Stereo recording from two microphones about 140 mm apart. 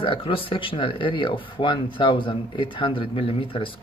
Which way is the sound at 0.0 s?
40° left (ahead or behind).